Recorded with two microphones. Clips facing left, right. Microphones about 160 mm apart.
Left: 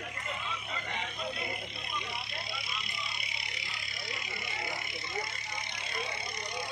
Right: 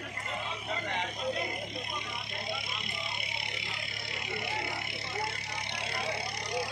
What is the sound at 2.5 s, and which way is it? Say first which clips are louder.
Vehicle: right 4 dB; 55° right (ahead or behind).